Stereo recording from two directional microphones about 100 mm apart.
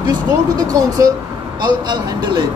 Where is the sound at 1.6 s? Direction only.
50° right (ahead or behind).